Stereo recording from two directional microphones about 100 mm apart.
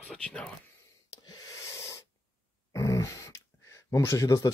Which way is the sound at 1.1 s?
40° left (ahead or behind).